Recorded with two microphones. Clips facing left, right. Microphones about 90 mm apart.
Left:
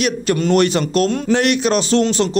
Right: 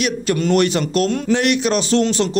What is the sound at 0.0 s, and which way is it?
A man's voice, 40° left (ahead or behind).